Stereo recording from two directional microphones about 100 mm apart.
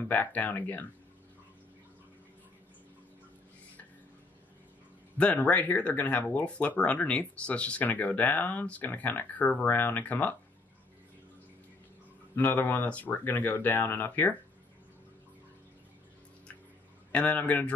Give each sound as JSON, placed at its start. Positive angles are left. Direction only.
{"t": 0.0, "sound": "speech", "side_deg": 15}
{"t": 5.1, "sound": "speech", "side_deg": 15}
{"t": 12.4, "sound": "speech", "side_deg": 20}
{"t": 17.1, "sound": "speech", "side_deg": 15}